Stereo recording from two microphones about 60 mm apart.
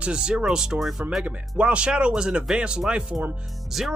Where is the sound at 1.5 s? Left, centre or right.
Centre.